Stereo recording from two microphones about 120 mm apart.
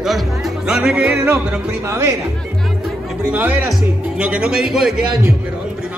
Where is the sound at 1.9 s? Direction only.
25° right (ahead or behind).